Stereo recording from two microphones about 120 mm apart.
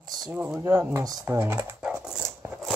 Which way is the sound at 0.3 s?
15° right (ahead or behind).